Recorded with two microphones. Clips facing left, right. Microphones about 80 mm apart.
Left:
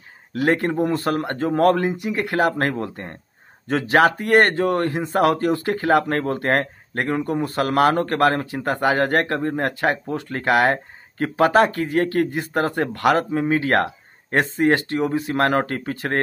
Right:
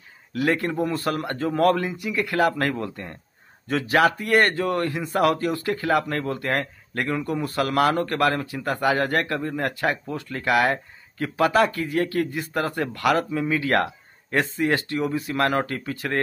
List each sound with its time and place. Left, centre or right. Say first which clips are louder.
0.3 s speech: left 3 dB; left